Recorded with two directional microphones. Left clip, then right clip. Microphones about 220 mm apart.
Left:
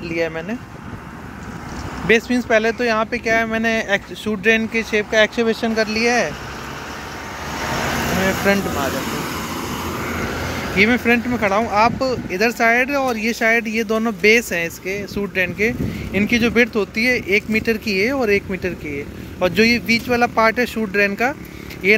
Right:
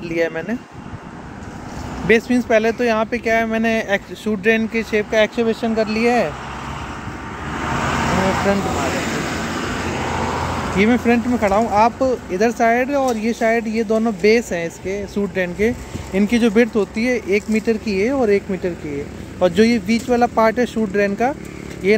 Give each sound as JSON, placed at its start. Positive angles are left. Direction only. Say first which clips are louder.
{"t": 0.1, "sound": "speech", "louder": "right 2 dB", "side_deg": -15}
{"t": 2.0, "sound": "speech", "louder": "right 1 dB", "side_deg": -10}
{"t": 7.4, "sound": "vehicle", "louder": "right 1 dB", "side_deg": 40}
{"t": 10.1, "sound": "vehicle", "louder": "right 3 dB", "side_deg": 45}
{"t": 10.8, "sound": "speech", "louder": "left 2 dB", "side_deg": -5}